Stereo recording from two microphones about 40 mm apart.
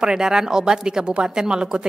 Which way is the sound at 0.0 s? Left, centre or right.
Centre.